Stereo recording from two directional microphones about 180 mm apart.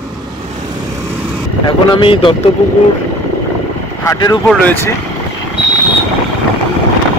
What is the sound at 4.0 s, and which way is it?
Speech, 20° left (ahead or behind).